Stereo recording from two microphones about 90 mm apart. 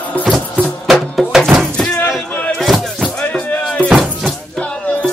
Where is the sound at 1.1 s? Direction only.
5° left (ahead or behind).